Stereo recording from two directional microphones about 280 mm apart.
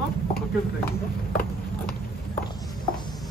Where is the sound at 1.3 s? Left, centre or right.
Left.